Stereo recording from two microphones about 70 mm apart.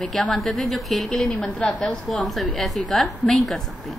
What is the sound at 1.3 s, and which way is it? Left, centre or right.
Speech, left.